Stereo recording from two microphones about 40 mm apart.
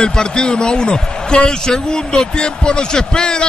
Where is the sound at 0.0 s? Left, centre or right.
Left.